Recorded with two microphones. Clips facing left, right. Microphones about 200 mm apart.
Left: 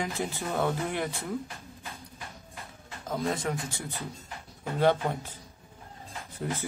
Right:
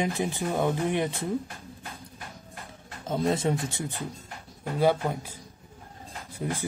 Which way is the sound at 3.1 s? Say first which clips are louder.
Right 5 dB; 25° right (ahead or behind).